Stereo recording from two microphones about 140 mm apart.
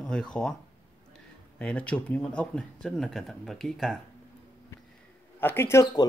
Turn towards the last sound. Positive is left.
turn(degrees=25)  # may be behind; listen again after turning